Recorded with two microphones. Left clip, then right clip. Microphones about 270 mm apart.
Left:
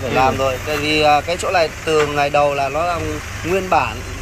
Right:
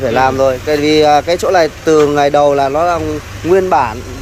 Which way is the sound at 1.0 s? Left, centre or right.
Right.